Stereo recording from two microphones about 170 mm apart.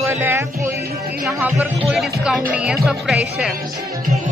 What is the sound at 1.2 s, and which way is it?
Music, 10° right (ahead or behind).